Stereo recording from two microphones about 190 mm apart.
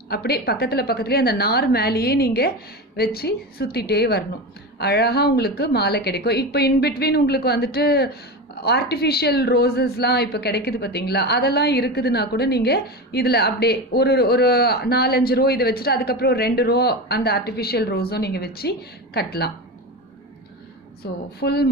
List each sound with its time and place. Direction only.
0.1 s a woman's voice: 55° left (ahead or behind)
21.0 s a woman's voice: 60° left (ahead or behind)